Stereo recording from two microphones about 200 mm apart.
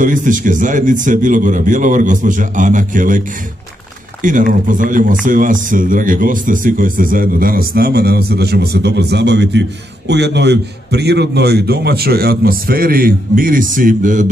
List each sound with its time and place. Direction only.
0.0 s a man's voice: 40° right (ahead or behind)
4.2 s speech: 40° right (ahead or behind)